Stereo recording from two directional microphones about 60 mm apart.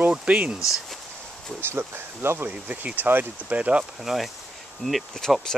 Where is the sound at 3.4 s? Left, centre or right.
Right.